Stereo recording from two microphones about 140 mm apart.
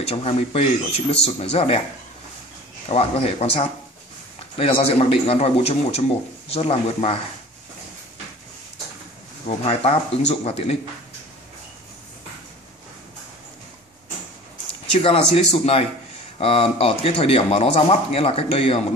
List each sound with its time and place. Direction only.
0.1 s speech: 45° left (ahead or behind)
2.9 s speech: 50° left (ahead or behind)
9.7 s speech: 45° left (ahead or behind)
15.0 s speech: 45° left (ahead or behind)